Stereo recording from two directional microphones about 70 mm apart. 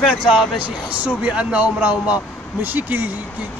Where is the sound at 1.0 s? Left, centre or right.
Centre.